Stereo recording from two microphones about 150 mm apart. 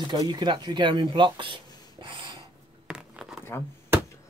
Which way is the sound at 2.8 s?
5° right (ahead or behind).